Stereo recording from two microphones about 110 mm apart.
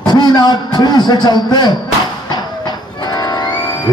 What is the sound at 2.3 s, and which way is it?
Music, 40° left (ahead or behind).